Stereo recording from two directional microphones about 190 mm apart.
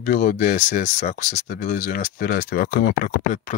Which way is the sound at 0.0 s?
45° left (ahead or behind).